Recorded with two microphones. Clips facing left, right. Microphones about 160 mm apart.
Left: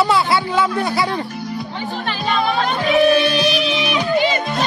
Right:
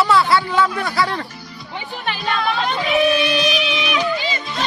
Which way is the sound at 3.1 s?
35° left (ahead or behind).